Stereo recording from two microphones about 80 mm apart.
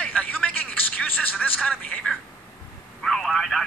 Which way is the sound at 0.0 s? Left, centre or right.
Centre.